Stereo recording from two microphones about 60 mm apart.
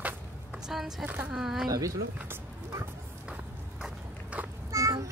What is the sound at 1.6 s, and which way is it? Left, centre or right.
Speech, right.